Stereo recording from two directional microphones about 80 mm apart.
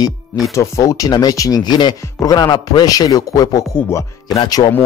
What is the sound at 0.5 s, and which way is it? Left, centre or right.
Speech, left.